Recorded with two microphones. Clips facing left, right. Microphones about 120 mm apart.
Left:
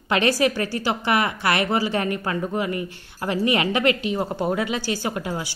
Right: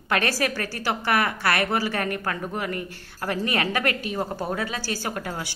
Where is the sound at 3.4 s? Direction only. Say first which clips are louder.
Left 5 dB; 15° left (ahead or behind).